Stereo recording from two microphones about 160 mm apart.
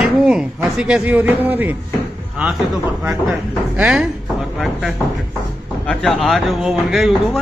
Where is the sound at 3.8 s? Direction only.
10° right (ahead or behind).